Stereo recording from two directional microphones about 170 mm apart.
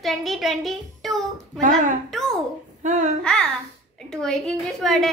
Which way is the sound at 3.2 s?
5° left (ahead or behind).